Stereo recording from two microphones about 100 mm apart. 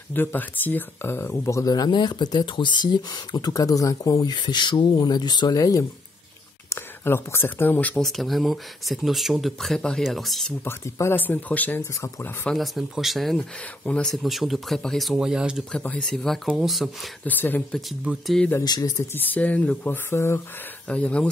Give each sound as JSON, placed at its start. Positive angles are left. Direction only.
{"t": 0.1, "sound": "speech", "side_deg": 20}
{"t": 6.7, "sound": "speech", "side_deg": 20}
{"t": 8.0, "sound": "speech", "side_deg": 0}
{"t": 10.6, "sound": "speech", "side_deg": 25}
{"t": 11.8, "sound": "speech", "side_deg": 30}
{"t": 12.4, "sound": "speech", "side_deg": 0}
{"t": 15.7, "sound": "speech", "side_deg": 10}
{"t": 17.2, "sound": "speech", "side_deg": 20}
{"t": 17.6, "sound": "speech", "side_deg": 0}
{"t": 18.6, "sound": "speech", "side_deg": 40}
{"t": 19.1, "sound": "speech", "side_deg": 15}
{"t": 20.1, "sound": "speech", "side_deg": 25}
{"t": 20.9, "sound": "speech", "side_deg": 10}